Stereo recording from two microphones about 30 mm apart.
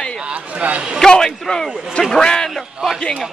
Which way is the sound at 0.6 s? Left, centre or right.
Right.